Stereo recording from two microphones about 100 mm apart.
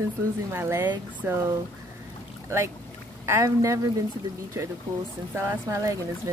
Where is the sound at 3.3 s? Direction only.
30° right (ahead or behind).